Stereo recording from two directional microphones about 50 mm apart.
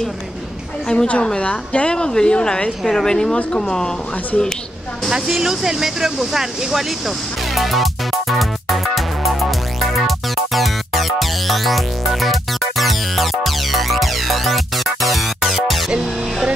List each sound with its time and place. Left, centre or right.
0.8 s a woman's voice: left
5.1 s a sound: centre
15.9 s music: centre